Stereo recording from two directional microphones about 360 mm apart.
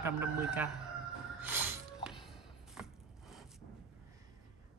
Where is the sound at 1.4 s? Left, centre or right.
Centre.